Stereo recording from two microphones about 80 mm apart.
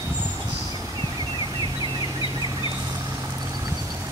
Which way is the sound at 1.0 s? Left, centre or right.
Right.